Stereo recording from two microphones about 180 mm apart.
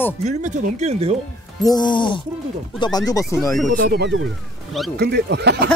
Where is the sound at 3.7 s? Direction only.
65° right (ahead or behind).